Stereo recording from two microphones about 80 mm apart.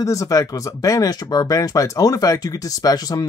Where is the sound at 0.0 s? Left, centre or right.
Left.